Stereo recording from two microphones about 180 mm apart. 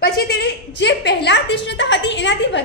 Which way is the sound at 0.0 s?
65° left (ahead or behind).